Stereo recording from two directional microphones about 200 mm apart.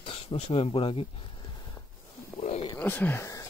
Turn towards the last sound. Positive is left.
turn(degrees=15)  # may be behind; listen again after turning